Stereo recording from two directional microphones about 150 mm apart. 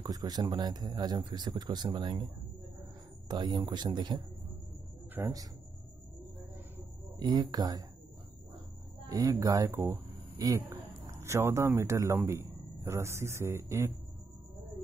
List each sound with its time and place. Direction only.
0.0 s speech: 25° right (ahead or behind)
3.3 s speech: 25° right (ahead or behind)
7.2 s speech: 25° right (ahead or behind)
9.1 s speech: 25° right (ahead or behind)